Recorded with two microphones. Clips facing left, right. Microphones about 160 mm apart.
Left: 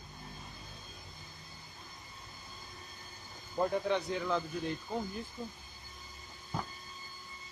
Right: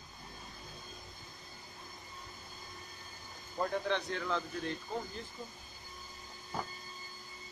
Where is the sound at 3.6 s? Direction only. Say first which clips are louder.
Left 3 dB; 10° left (ahead or behind).